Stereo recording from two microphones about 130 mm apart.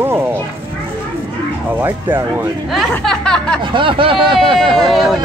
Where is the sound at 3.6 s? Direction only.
40° right (ahead or behind).